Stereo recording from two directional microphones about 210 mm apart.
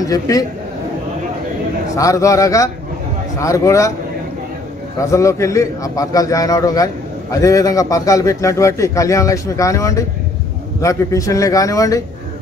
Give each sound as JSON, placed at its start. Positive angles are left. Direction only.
{"t": 0.0, "sound": "a man's voice", "side_deg": 15}
{"t": 2.0, "sound": "a man's voice", "side_deg": 15}
{"t": 5.1, "sound": "a man's voice", "side_deg": 15}